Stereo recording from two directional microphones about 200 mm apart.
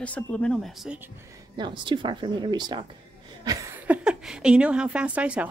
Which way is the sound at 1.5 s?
25° right (ahead or behind).